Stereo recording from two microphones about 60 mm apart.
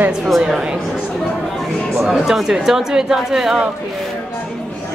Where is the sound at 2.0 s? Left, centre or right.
Centre.